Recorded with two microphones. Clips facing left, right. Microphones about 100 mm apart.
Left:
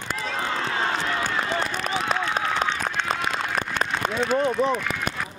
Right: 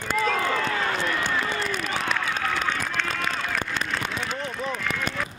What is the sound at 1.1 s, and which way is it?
Run, 40° left (ahead or behind).